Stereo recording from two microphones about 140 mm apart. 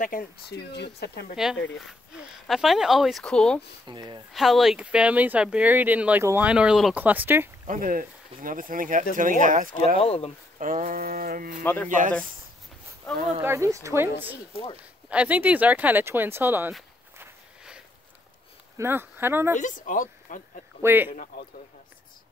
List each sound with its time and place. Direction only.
0.0 s speech: 80° left
1.3 s speech: 5° right (ahead or behind)
3.8 s speech: 30° right (ahead or behind)
4.3 s speech: centre (ahead or behind)
7.6 s speech: 75° right (ahead or behind)
9.9 s speech: 45° left (ahead or behind)
10.6 s speech: 80° right
11.6 s speech: 15° left (ahead or behind)
11.9 s speech: 70° right (ahead or behind)
13.4 s speech: 20° right (ahead or behind)
18.8 s speech: 15° right (ahead or behind)
19.6 s speech: 70° left (ahead or behind)
20.8 s speech: 15° right (ahead or behind)
21.1 s a man's voice: 65° left (ahead or behind)